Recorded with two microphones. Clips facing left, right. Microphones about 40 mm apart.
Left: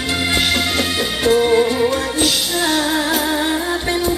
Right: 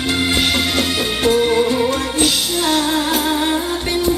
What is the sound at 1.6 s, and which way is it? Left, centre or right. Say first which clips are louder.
Music: even; centre.